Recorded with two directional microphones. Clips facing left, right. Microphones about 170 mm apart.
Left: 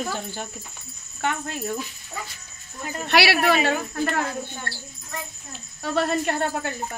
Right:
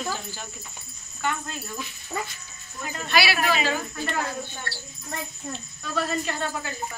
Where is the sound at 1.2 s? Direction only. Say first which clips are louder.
Left 2 dB; 65° left (ahead or behind).